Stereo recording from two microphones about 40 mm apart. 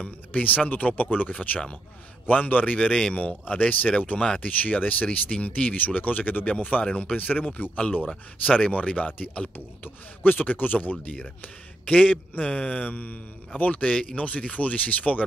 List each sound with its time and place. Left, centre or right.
0.0 s speech: left
2.9 s speech: left
8.1 s speech: left
9.8 s speech: left
12.9 s speech: left